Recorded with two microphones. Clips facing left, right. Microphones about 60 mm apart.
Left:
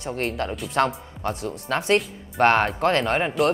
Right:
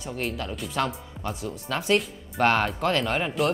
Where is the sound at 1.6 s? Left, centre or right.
Left.